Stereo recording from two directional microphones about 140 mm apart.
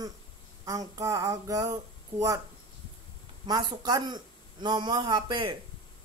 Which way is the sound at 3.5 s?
30° right (ahead or behind).